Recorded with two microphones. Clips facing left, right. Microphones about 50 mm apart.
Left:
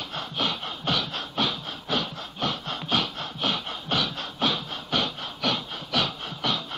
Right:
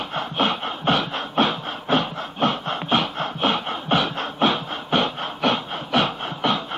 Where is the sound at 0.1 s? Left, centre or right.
Right.